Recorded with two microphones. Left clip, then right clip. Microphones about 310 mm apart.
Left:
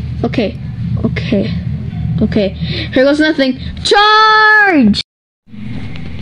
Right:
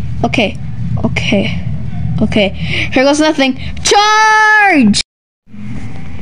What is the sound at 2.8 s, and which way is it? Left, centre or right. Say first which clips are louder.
A woman's voice: even; centre.